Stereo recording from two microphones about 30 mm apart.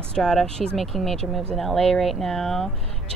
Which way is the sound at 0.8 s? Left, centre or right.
Centre.